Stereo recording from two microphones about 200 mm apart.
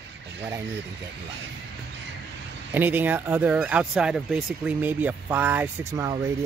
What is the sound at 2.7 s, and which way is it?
Speech, 10° right (ahead or behind).